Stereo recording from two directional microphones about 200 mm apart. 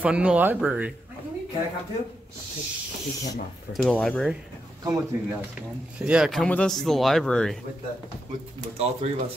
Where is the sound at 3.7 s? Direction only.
5° left (ahead or behind).